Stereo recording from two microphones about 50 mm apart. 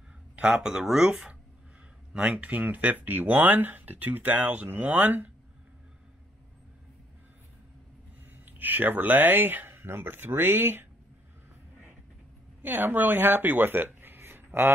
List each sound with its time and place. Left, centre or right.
0.6 s speech: centre; by 5.3 s right
8.5 s speech: right
12.6 s speech: right